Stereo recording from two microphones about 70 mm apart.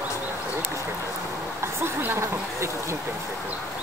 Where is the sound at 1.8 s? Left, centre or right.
Right.